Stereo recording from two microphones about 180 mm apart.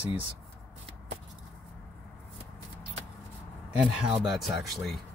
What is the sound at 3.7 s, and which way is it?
A man's voice, 5° right (ahead or behind).